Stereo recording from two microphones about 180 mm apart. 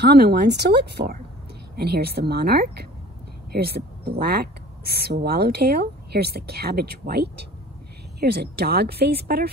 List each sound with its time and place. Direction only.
0.0 s speech: 65° right (ahead or behind)